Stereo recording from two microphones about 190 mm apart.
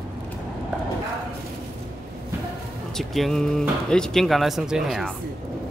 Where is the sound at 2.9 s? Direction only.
Centre (ahead or behind).